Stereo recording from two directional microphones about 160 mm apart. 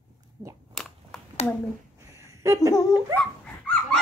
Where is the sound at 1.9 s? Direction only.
20° right (ahead or behind).